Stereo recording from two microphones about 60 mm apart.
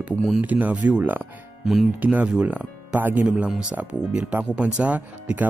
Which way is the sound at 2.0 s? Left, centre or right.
Right.